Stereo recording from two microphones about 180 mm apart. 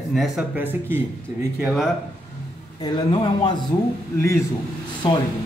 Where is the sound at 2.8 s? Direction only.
25° left (ahead or behind).